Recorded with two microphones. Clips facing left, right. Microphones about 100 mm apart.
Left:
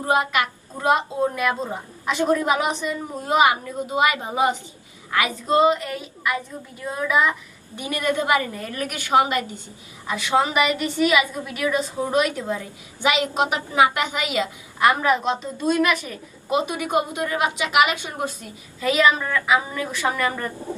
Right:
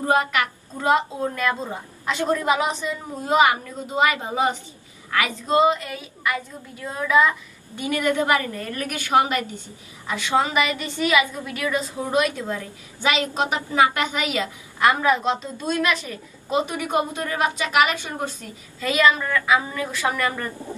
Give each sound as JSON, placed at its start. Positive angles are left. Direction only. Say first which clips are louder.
{"t": 0.0, "sound": "a woman's voice", "louder": "even", "side_deg": 15}